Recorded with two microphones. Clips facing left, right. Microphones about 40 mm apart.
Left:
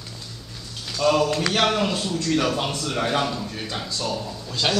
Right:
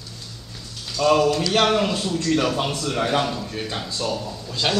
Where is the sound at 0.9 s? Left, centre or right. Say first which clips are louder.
Right 2 dB; centre.